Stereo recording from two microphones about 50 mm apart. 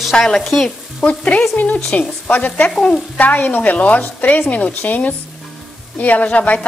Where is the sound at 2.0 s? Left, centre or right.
Centre.